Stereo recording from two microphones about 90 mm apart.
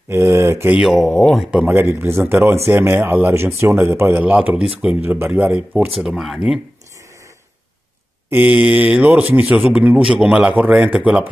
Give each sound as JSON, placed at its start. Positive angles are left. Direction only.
{"t": 0.1, "sound": "speech", "side_deg": -30}
{"t": 1.2, "sound": "speech", "side_deg": 0}
{"t": 1.6, "sound": "speech", "side_deg": -20}
{"t": 5.0, "sound": "speech", "side_deg": -25}
{"t": 5.9, "sound": "speech", "side_deg": -5}
{"t": 8.5, "sound": "speech", "side_deg": -10}